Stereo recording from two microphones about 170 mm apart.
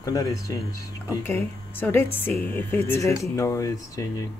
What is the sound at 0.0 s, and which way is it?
Speech, 20° left (ahead or behind).